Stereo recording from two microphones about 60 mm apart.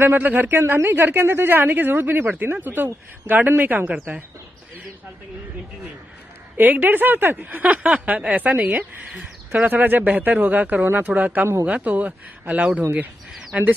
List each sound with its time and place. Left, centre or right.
0.0 s speech: right
0.5 s speech: right
6.5 s speech: right